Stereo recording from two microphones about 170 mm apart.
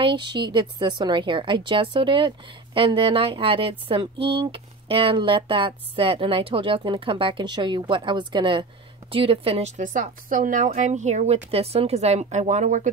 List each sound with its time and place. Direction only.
0.0 s a woman's voice: 25° right (ahead or behind); by 12.9 s 45° right (ahead or behind)